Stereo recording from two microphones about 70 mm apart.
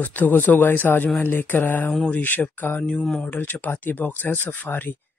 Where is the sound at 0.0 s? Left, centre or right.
Left.